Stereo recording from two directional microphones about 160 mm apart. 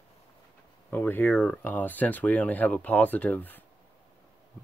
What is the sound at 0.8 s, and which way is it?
Speech, 10° left (ahead or behind).